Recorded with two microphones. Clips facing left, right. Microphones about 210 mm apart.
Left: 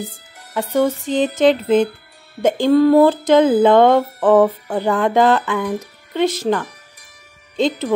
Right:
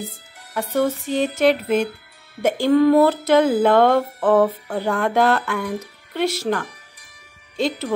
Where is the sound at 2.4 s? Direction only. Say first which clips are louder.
Left 2 dB; 20° left (ahead or behind).